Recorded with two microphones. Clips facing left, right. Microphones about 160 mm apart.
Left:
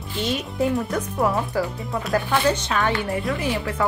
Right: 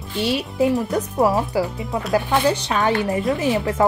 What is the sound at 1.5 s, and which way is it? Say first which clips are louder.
Speech: right 3 dB; 10° right (ahead or behind).